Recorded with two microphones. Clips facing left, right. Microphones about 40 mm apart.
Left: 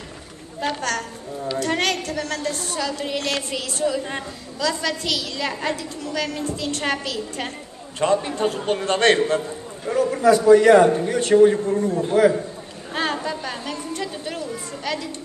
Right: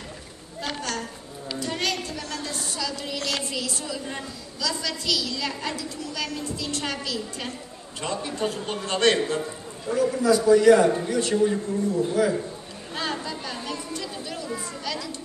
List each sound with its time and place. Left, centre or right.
0.7 s a man's voice: left
12.9 s chatter: left